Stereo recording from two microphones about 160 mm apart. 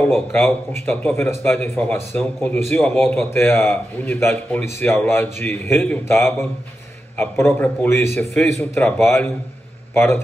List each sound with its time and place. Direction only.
0.3 s a man's voice: 15° left (ahead or behind)